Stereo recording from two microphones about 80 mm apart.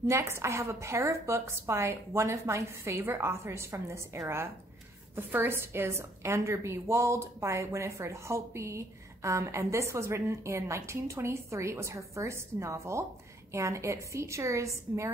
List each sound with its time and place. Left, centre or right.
0.0 s a woman's voice: right